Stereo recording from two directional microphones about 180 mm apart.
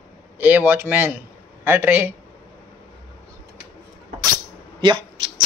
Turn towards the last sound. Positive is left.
turn(degrees=-25)  # may be behind; listen again after turning